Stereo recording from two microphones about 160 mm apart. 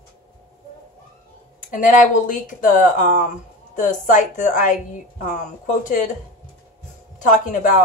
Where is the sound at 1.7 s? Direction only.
55° left (ahead or behind).